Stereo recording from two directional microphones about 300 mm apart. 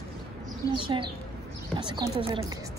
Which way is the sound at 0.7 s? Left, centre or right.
Centre.